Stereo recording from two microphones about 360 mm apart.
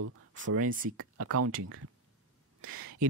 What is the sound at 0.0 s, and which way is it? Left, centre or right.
Speech, right.